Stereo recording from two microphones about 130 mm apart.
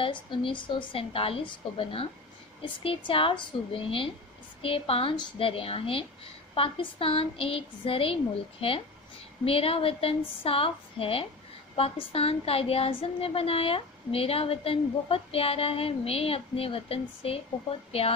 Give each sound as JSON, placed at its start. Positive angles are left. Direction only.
{"t": 0.0, "sound": "a woman's voice", "side_deg": 40}